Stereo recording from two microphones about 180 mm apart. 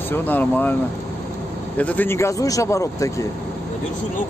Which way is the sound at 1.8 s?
10° left (ahead or behind).